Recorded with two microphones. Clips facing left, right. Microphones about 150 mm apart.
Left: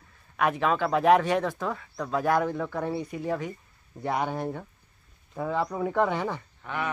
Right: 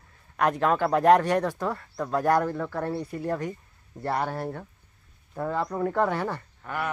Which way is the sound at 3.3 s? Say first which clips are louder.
Right 2 dB; 10° left (ahead or behind).